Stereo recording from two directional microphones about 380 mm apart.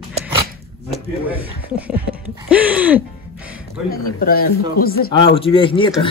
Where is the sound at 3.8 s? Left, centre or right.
Left.